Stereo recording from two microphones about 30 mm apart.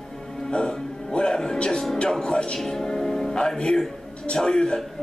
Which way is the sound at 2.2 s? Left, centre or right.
Left.